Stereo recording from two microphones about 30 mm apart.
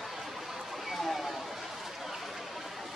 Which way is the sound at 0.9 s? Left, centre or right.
Centre.